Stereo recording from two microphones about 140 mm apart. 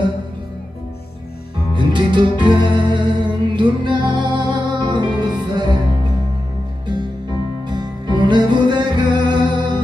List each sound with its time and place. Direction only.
1.7 s music: 35° right (ahead or behind)
7.6 s music: 30° right (ahead or behind)